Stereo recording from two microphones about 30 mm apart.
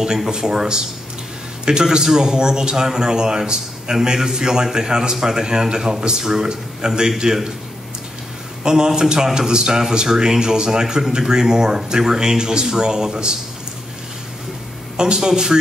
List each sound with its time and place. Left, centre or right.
0.0 s a man's voice: right
8.6 s a man's voice: right
15.0 s a man's voice: right